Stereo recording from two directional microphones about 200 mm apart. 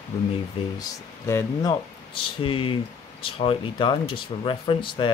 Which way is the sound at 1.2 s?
15° left (ahead or behind).